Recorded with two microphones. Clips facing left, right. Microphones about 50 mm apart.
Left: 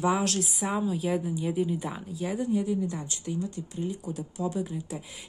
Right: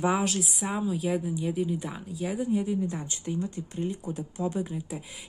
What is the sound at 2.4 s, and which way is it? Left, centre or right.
Speech, centre.